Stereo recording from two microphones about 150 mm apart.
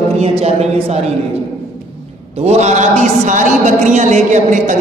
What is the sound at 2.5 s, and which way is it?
A man's voice, 50° right (ahead or behind).